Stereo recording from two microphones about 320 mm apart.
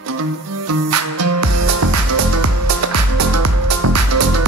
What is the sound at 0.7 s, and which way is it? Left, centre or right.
Music, right.